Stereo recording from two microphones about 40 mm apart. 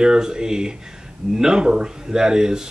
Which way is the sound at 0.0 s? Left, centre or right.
Centre.